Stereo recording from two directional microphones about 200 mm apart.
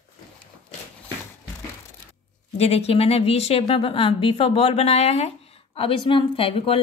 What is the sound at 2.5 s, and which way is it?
A woman's voice, 30° left (ahead or behind).